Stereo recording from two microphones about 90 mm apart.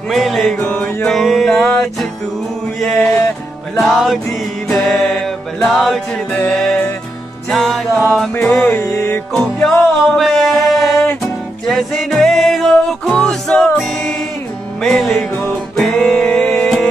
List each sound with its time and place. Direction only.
0.1 s music: centre (ahead or behind)
3.8 s music: centre (ahead or behind)
8.8 s music: 30° left (ahead or behind)
9.3 s music: 5° left (ahead or behind)
14.8 s music: centre (ahead or behind)